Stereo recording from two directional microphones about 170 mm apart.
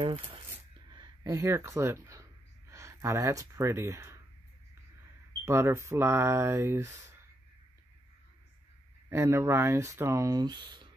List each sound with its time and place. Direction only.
0.7 s speech: 25° right (ahead or behind)
5.4 s speech: 15° right (ahead or behind)
9.1 s speech: 15° right (ahead or behind)